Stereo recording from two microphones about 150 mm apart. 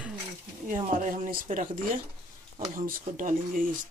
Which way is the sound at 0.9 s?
65° right (ahead or behind).